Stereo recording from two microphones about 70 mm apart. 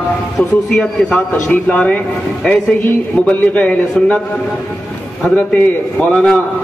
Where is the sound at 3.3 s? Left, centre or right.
Left.